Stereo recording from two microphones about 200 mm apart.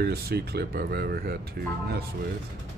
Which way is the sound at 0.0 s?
50° right (ahead or behind).